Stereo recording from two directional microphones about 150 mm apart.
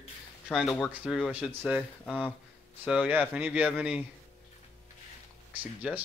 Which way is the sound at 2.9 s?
10° right (ahead or behind).